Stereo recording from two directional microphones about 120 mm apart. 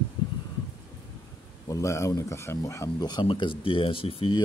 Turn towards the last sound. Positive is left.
turn(degrees=50)  # may be behind; listen again after turning